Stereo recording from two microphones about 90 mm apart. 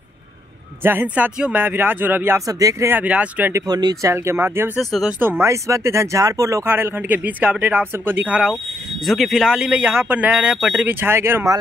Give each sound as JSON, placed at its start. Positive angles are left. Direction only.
{"t": 0.8, "sound": "speech", "side_deg": -20}
{"t": 2.4, "sound": "speech", "side_deg": -40}
{"t": 2.9, "sound": "speech", "side_deg": -15}
{"t": 3.6, "sound": "speech", "side_deg": -50}
{"t": 4.7, "sound": "speech", "side_deg": -5}
{"t": 5.2, "sound": "speech", "side_deg": -25}
{"t": 6.6, "sound": "speech", "side_deg": -25}
{"t": 9.0, "sound": "speech", "side_deg": 0}